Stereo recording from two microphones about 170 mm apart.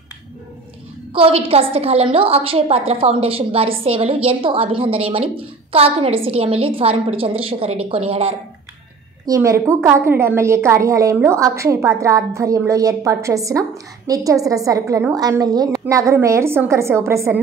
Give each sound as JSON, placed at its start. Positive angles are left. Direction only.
{"t": 1.1, "sound": "a woman's voice", "side_deg": -35}
{"t": 9.2, "sound": "a woman's voice", "side_deg": -20}